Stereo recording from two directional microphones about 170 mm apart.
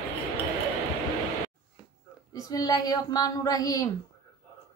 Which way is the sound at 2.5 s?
20° left (ahead or behind).